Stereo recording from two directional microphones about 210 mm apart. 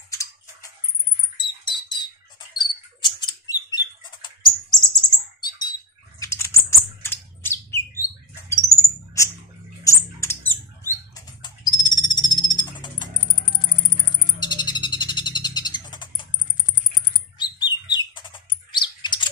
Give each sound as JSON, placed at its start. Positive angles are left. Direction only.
{"t": 0.1, "sound": "chewing", "side_deg": 15}
{"t": 1.3, "sound": "a sound", "side_deg": 20}
{"t": 2.6, "sound": "rodents", "side_deg": 20}
{"t": 5.4, "sound": "bird", "side_deg": 20}
{"t": 6.2, "sound": "typing", "side_deg": 15}
{"t": 7.0, "sound": "bird", "side_deg": 10}
{"t": 9.8, "sound": "rodents", "side_deg": 10}
{"t": 14.4, "sound": "bird", "side_deg": 20}
{"t": 17.4, "sound": "bird", "side_deg": 20}